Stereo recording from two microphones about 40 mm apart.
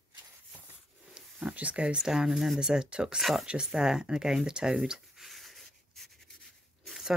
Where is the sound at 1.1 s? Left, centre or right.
Right.